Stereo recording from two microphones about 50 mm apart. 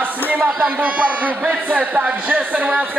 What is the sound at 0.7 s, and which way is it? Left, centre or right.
A man's voice, right.